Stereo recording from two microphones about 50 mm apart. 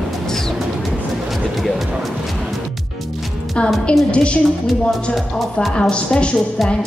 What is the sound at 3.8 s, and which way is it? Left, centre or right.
Speech, left.